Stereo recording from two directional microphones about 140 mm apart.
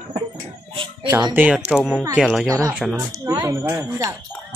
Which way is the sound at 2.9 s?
25° right (ahead or behind).